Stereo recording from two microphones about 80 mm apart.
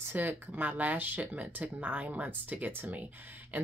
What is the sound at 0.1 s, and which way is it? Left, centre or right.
Speech, right.